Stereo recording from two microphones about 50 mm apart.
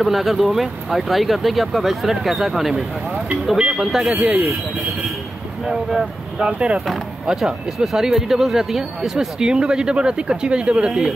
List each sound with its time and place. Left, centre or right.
0.0 s speech: centre
5.7 s speech: centre
6.3 s speech: centre